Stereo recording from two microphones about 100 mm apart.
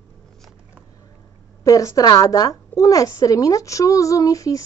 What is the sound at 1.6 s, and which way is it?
A woman's voice, 35° left (ahead or behind).